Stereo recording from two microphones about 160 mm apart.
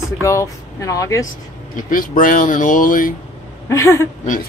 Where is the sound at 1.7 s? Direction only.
60° left (ahead or behind).